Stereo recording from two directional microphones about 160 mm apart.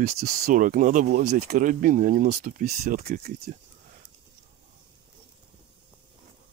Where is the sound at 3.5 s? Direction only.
55° right (ahead or behind).